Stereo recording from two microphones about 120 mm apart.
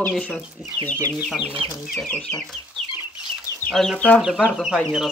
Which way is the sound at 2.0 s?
10° left (ahead or behind).